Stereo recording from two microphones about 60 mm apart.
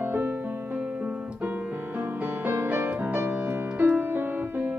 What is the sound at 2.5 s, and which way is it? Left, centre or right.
Music, right.